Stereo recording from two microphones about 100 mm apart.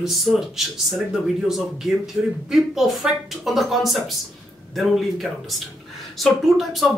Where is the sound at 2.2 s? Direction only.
Centre (ahead or behind).